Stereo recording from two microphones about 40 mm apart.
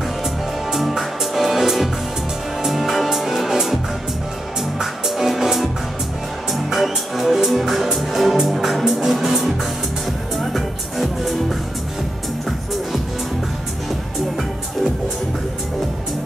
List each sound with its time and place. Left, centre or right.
0.7 s music: centre